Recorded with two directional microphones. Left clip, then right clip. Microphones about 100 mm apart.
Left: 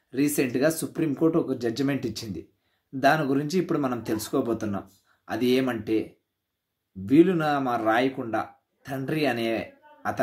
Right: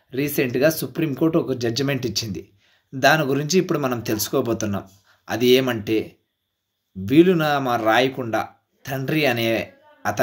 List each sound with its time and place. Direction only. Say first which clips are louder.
0.1 s speech: right 3 dB; 10° right (ahead or behind)